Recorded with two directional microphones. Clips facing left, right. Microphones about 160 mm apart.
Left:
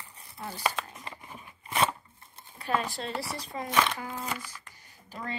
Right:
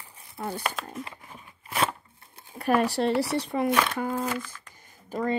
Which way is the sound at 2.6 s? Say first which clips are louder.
Right 8 dB; 65° right (ahead or behind).